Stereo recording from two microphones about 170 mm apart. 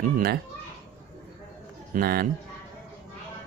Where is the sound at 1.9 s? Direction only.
60° right (ahead or behind).